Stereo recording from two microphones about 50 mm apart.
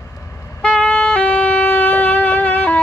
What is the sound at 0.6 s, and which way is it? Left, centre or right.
Music, left.